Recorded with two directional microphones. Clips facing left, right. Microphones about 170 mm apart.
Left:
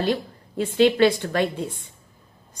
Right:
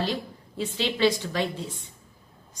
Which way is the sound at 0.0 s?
55° left (ahead or behind).